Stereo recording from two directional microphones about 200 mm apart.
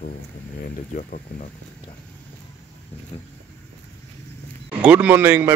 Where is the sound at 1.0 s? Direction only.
40° left (ahead or behind).